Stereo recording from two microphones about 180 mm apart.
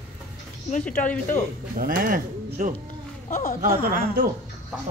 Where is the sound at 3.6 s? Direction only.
50° right (ahead or behind).